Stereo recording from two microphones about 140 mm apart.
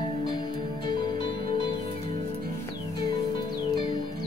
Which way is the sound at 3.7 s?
35° left (ahead or behind).